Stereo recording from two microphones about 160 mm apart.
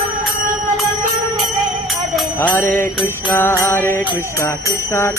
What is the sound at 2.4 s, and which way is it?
Music, 10° left (ahead or behind).